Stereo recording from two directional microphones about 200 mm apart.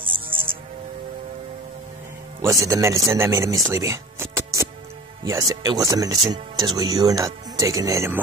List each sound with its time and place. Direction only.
2.4 s speech: 15° right (ahead or behind)